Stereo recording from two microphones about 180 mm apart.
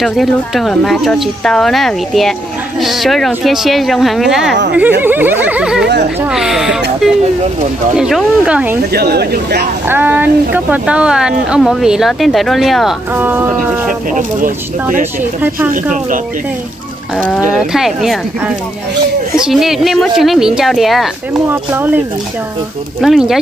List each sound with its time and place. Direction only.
0.0 s speech: centre (ahead or behind)
5.0 s a sound: 10° right (ahead or behind)
6.2 s speech: 5° right (ahead or behind)
8.0 s speech: 5° right (ahead or behind)
8.9 s speech: 60° right (ahead or behind)
9.8 s speech: 10° right (ahead or behind)
13.1 s a sound: 10° right (ahead or behind)
14.1 s speech: 45° right (ahead or behind)
17.4 s speech: centre (ahead or behind)
19.3 s speech: 5° right (ahead or behind)
21.5 s a sound: 10° right (ahead or behind)
22.9 s speech: centre (ahead or behind)